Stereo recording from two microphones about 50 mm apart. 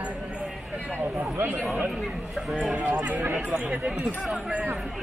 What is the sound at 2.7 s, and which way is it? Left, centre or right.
Speech, right.